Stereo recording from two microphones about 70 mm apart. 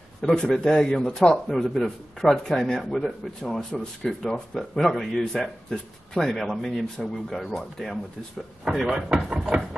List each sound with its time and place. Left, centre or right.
0.2 s a man's voice: centre
8.6 s speech: centre